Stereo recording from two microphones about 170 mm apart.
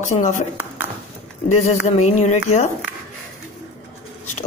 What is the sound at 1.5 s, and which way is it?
Speech, 40° left (ahead or behind).